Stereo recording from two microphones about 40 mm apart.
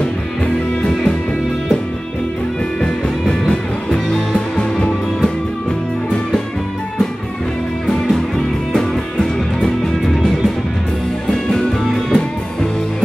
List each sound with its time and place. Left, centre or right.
2.8 s music: centre
8.7 s music: centre